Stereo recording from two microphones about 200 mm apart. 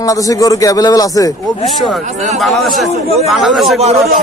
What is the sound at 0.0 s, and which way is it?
A man's voice, 15° left (ahead or behind).